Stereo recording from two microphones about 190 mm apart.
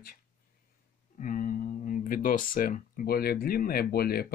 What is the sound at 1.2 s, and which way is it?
Speech, 50° left (ahead or behind).